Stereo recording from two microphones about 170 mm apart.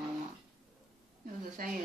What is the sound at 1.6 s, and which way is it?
Speech, 55° right (ahead or behind).